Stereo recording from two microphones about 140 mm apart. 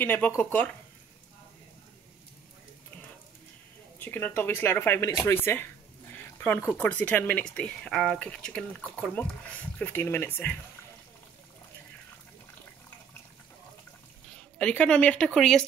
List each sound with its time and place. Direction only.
0.0 s speech: 15° left (ahead or behind)
4.0 s speech: 15° left (ahead or behind)
14.6 s speech: 10° left (ahead or behind)